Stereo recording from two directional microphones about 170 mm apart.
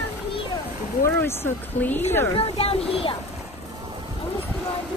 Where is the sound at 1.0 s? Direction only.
15° left (ahead or behind).